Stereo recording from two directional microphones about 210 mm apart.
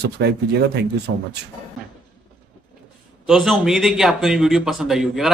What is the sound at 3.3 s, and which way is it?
Speech, centre (ahead or behind).